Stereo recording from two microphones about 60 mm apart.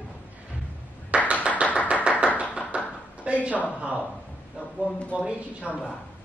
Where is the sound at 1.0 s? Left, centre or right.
Centre.